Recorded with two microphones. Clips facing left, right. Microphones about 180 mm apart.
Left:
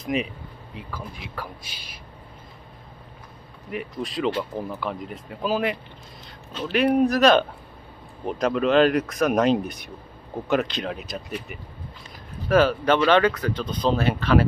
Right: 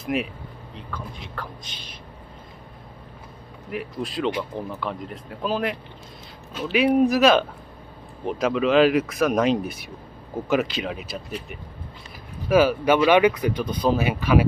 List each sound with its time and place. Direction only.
0.0 s speech: 5° right (ahead or behind)
3.7 s speech: centre (ahead or behind)